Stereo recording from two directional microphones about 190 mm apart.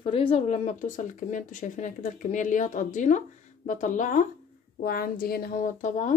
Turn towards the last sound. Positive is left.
turn(degrees=40)  # may be behind; listen again after turning